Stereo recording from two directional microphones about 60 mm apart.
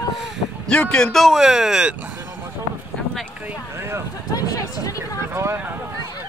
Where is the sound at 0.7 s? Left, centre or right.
Centre.